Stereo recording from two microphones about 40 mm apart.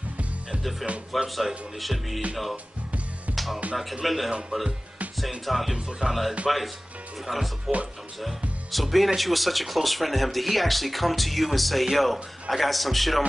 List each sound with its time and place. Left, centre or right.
1.1 s speech: centre
2.5 s music: right
3.3 s music: centre
4.0 s speech: centre
5.4 s speech: centre